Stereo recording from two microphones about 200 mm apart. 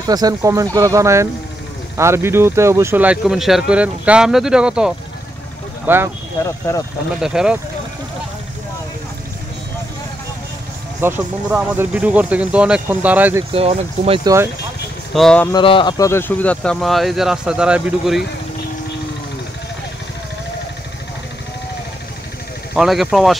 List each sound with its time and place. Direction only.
0.0 s speech: 20° right (ahead or behind)
6.7 s speech: 15° left (ahead or behind)
7.2 s speech: 5° right (ahead or behind)
11.0 s speech: 10° right (ahead or behind)
13.5 s speech: 30° right (ahead or behind)
14.2 s speech: 15° right (ahead or behind)
15.1 s speech: 5° left (ahead or behind)
15.5 s speech: 25° left (ahead or behind); by 18.2 s 5° right (ahead or behind)
22.8 s speech: centre (ahead or behind)